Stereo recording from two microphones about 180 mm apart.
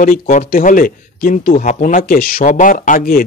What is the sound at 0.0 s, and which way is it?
Speech, 50° left (ahead or behind).